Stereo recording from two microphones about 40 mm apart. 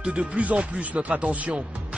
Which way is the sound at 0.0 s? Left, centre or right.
Right.